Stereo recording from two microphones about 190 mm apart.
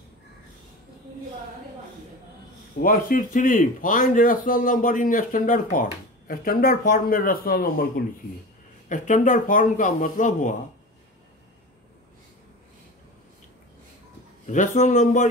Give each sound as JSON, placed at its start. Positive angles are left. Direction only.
{"t": 2.8, "sound": "a man's voice", "side_deg": 45}
{"t": 14.4, "sound": "a man's voice", "side_deg": 40}